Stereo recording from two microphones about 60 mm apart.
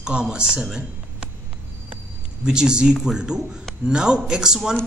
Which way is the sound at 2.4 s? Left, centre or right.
Centre.